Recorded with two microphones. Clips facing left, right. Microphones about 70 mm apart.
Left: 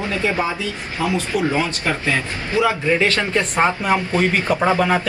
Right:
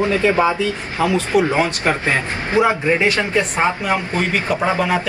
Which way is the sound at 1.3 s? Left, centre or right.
Right.